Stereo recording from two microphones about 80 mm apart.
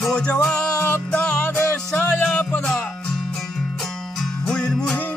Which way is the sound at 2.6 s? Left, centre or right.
Centre.